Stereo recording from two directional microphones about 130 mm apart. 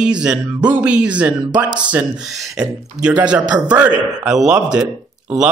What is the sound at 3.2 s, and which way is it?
Speech, 10° right (ahead or behind).